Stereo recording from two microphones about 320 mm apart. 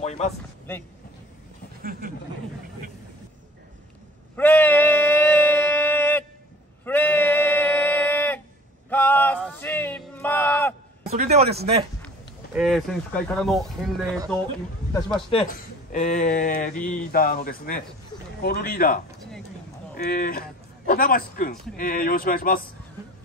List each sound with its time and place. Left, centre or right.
0.0 s a sound: left
1.8 s speech: right
4.4 s a sound: centre
11.1 s a man's voice: centre
12.5 s speech: centre
15.1 s a man's voice: centre